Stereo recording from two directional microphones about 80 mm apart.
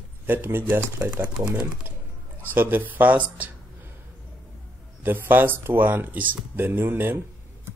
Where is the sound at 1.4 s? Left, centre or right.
Right.